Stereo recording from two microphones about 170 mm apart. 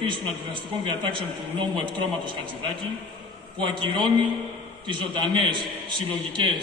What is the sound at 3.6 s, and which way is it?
A man's voice, 30° right (ahead or behind).